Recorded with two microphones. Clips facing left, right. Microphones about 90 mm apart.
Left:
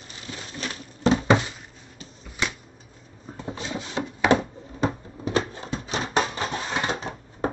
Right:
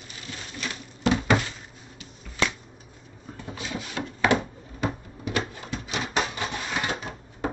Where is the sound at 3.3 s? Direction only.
30° left (ahead or behind).